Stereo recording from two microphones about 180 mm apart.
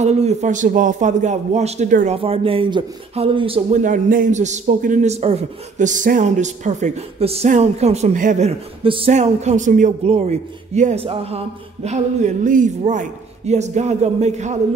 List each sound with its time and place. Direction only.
0.0 s speech: 40° right (ahead or behind)
1.9 s speech: 50° right (ahead or behind)
2.1 s speech: 30° right (ahead or behind)
3.8 s speech: 45° right (ahead or behind)